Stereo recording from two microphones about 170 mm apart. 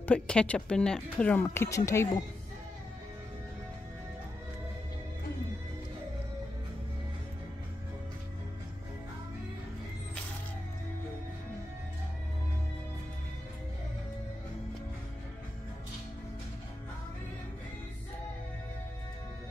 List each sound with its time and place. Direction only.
0.0 s speech: 5° left (ahead or behind)